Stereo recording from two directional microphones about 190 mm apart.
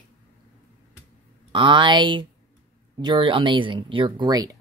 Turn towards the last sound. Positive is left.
turn(degrees=-20)  # may be behind; listen again after turning